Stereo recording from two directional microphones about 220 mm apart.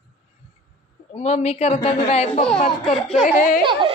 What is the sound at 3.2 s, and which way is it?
Speech, 40° left (ahead or behind).